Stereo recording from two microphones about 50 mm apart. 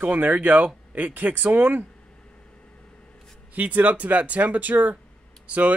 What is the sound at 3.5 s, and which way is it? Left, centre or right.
A man's voice, right.